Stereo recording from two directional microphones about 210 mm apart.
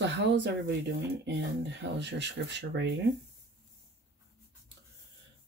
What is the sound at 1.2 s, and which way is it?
Speech, 55° right (ahead or behind).